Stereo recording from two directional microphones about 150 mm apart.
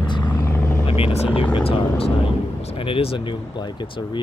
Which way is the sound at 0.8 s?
40° left (ahead or behind).